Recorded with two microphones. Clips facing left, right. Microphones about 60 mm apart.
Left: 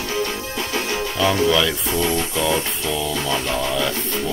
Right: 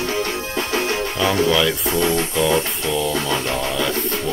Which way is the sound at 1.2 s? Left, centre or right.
Centre.